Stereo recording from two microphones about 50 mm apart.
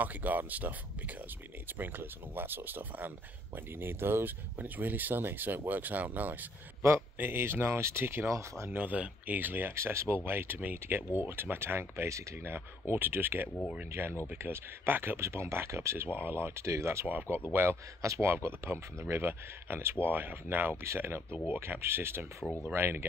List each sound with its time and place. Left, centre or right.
0.0 s speech: right
7.2 s speech: right
8.3 s speech: right
8.7 s speech: right
9.8 s speech: right
10.8 s speech: right
15.1 s speech: right
16.1 s speech: right
16.6 s speech: right
17.5 s speech: right
20.1 s speech: right